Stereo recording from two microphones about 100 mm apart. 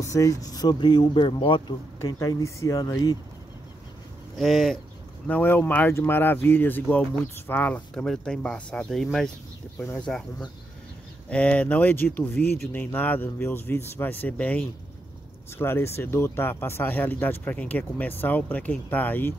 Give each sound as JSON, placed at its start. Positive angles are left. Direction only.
{"t": 0.0, "sound": "speech", "side_deg": 30}
{"t": 2.0, "sound": "speech", "side_deg": 30}
{"t": 4.4, "sound": "speech", "side_deg": 5}
{"t": 5.2, "sound": "speech", "side_deg": 15}